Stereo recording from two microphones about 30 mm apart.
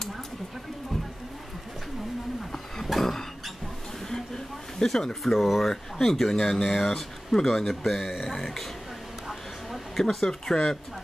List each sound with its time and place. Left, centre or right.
3.0 s a sound: centre
4.8 s speech: centre
9.9 s speech: centre